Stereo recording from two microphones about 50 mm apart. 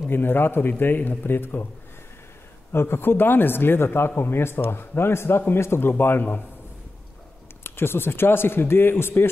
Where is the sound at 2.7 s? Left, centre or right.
Left.